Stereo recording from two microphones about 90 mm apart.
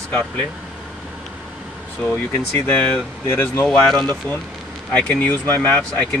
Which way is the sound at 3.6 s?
10° left (ahead or behind).